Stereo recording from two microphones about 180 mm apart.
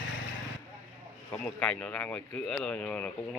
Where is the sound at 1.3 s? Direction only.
10° left (ahead or behind).